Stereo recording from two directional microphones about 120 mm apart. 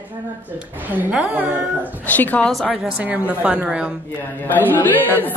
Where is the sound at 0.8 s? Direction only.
15° right (ahead or behind).